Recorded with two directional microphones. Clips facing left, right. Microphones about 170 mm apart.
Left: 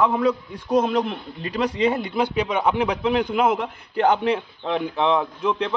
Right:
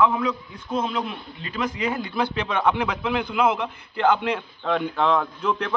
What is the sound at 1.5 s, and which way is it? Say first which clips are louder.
A man's voice: left 5 dB; 30° left (ahead or behind).